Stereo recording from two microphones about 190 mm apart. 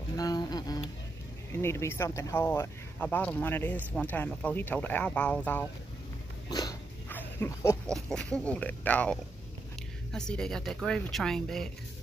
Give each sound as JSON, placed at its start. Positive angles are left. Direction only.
{"t": 0.1, "sound": "a sound", "side_deg": 20}
{"t": 1.5, "sound": "speech", "side_deg": 15}
{"t": 6.5, "sound": "dog", "side_deg": 20}
{"t": 7.9, "sound": "speech", "side_deg": 5}